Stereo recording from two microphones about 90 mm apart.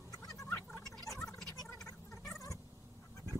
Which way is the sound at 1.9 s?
40° left (ahead or behind).